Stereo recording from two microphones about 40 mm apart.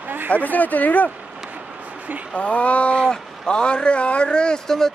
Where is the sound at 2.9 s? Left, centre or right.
Centre.